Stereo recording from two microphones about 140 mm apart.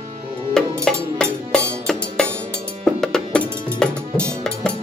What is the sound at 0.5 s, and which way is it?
Music, 5° left (ahead or behind).